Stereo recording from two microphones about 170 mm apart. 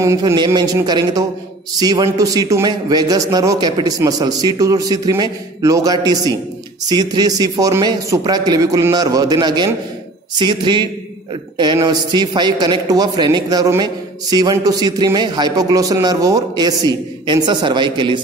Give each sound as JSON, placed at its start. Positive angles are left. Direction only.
{"t": 0.0, "sound": "a man's voice", "side_deg": -20}